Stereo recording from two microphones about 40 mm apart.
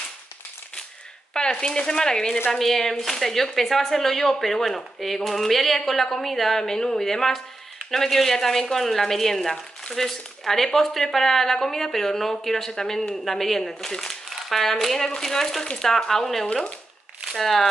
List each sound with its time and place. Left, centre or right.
1.3 s speech: left; by 17.6 s centre